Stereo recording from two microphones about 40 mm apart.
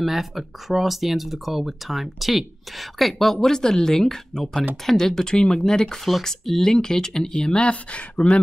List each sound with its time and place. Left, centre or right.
0.0 s speech: centre
7.3 s speech: left